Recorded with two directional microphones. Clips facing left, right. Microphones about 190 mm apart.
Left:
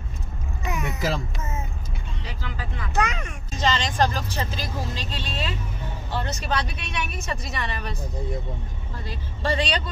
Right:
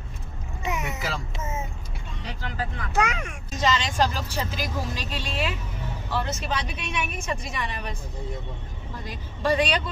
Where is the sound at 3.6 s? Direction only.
35° left (ahead or behind).